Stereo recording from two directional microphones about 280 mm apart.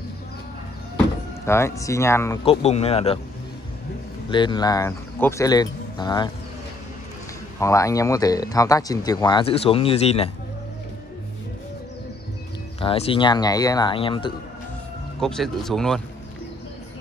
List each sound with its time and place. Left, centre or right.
0.9 s speech: centre
2.4 s speech: left
4.3 s speech: centre
7.6 s speech: centre
12.8 s speech: centre
15.1 s speech: centre